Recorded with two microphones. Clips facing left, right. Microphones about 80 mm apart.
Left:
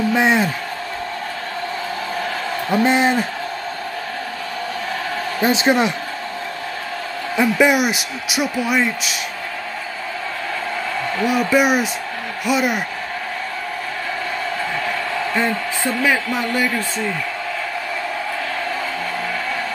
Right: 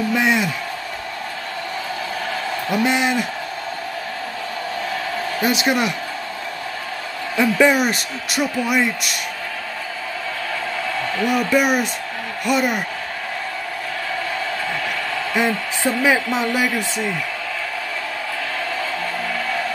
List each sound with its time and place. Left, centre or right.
0.1 s speech: left
2.7 s a man's voice: left
5.4 s speech: left
7.3 s speech: centre
11.2 s speech: centre
15.3 s a man's voice: centre